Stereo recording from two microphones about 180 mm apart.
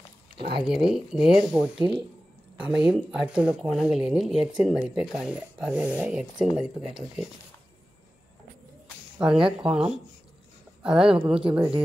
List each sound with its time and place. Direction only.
0.7 s speech: 5° right (ahead or behind)
1.8 s speech: 25° right (ahead or behind)
2.6 s speech: 5° right (ahead or behind)
9.2 s speech: 5° right (ahead or behind)